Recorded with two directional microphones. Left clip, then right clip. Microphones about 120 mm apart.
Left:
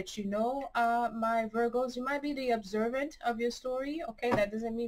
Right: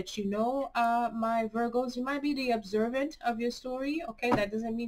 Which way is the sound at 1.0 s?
Centre (ahead or behind).